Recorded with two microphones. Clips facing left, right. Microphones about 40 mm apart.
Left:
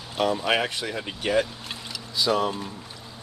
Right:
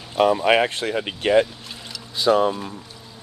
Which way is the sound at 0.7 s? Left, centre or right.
Right.